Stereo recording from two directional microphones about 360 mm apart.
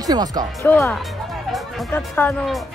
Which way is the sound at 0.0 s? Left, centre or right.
Centre.